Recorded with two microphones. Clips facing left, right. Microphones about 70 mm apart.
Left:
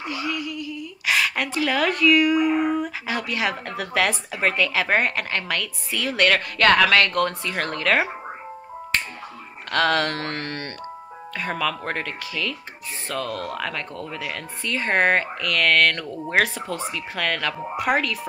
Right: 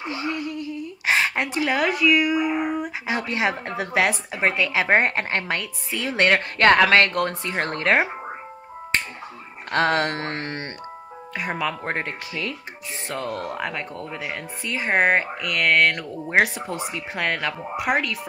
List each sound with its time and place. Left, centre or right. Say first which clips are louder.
0.0 s a sound: even; right
1.9 s a woman's voice: left 4 dB; centre
3.2 s speech: right 1 dB; right
9.7 s a woman's voice: even; right
17.7 s speech: left 1 dB; centre